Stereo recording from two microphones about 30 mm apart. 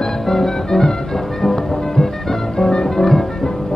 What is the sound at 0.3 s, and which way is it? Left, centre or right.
Music, centre.